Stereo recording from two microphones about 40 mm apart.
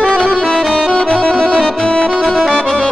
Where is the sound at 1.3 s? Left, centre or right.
Centre.